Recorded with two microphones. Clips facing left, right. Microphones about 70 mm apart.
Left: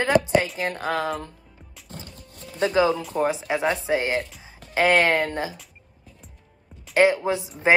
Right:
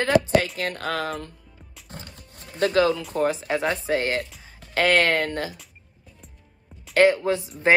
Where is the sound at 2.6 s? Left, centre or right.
Centre.